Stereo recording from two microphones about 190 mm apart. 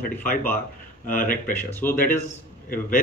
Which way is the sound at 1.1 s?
45° left (ahead or behind).